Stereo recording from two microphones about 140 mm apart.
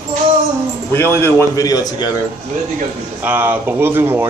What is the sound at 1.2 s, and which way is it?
Speech, 25° left (ahead or behind).